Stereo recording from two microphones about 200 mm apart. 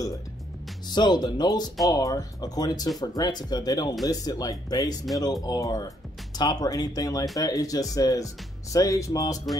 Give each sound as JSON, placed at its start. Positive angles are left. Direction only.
{"t": 0.8, "sound": "speech", "side_deg": 20}